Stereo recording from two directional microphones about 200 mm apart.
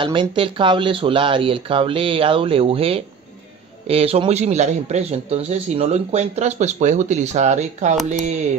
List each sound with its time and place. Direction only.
0.0 s speech: 25° right (ahead or behind)